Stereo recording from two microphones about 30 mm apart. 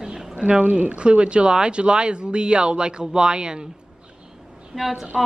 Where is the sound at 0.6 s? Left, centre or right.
Right.